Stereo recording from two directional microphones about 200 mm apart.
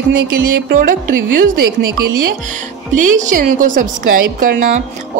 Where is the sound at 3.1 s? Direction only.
40° right (ahead or behind).